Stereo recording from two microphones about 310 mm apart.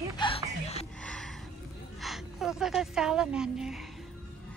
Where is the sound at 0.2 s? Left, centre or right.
Centre.